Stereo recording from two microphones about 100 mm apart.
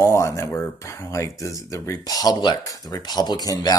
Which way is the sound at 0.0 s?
30° left (ahead or behind).